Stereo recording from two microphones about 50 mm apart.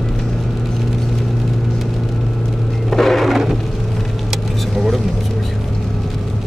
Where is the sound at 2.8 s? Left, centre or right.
Centre.